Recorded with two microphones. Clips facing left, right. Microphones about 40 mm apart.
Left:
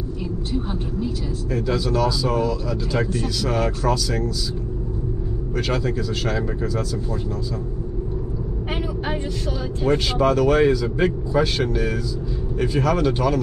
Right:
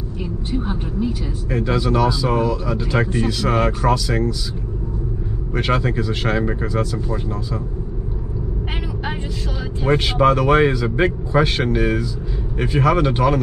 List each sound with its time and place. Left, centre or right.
0.2 s speech: centre
1.5 s speech: right
5.6 s speech: right
9.8 s speech: right